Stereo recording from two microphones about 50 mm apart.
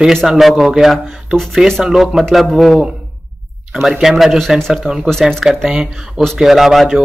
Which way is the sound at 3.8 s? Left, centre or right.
Centre.